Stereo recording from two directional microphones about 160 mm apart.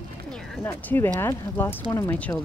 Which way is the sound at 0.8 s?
10° left (ahead or behind).